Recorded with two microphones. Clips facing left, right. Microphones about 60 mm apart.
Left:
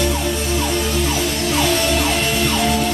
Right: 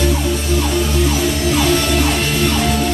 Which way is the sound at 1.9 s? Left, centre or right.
Centre.